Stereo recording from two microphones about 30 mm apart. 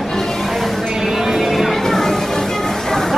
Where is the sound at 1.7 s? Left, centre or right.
Centre.